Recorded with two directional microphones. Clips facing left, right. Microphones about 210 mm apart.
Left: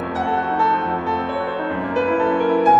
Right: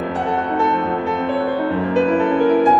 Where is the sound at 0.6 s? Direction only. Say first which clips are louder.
Right 3 dB; 20° right (ahead or behind).